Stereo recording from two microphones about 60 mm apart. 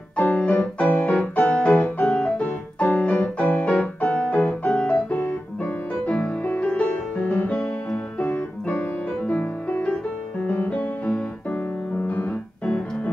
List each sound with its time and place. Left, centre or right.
0.2 s music: left
4.9 s piano: left
6.0 s music: left
8.3 s keyboard: left
9.3 s music: left
12.1 s piano: left